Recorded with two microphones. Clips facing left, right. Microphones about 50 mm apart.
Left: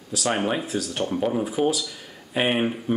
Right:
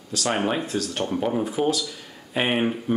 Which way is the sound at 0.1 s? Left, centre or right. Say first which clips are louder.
Even; centre.